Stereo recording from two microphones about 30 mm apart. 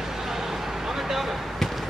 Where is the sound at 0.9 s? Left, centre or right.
Centre.